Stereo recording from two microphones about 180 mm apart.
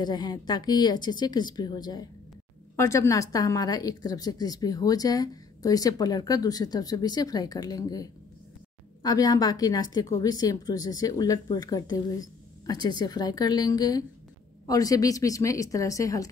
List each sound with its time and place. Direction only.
0.0 s a woman's voice: 20° left (ahead or behind)